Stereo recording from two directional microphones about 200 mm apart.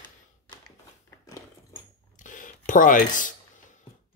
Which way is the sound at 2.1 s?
40° left (ahead or behind).